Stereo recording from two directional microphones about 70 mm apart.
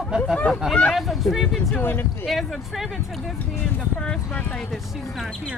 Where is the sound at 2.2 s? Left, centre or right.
Centre.